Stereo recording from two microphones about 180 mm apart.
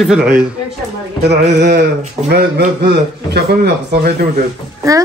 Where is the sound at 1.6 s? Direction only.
65° right (ahead or behind).